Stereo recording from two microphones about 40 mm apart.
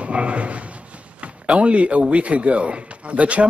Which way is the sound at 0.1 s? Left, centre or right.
Right.